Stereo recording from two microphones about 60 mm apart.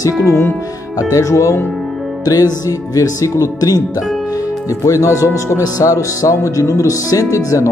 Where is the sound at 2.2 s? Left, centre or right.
Left.